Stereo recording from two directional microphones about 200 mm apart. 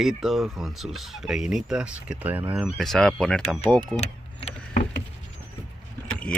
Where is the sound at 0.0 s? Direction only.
Centre (ahead or behind).